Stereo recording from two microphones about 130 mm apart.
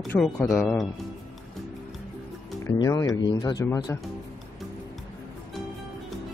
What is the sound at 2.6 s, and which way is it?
Speech, 25° left (ahead or behind).